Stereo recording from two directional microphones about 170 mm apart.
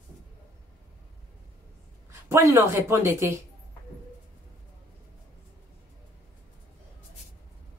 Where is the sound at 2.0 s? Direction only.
15° right (ahead or behind).